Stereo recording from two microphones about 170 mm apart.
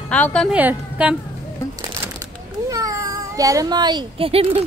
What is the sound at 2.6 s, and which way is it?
Speech, 20° right (ahead or behind).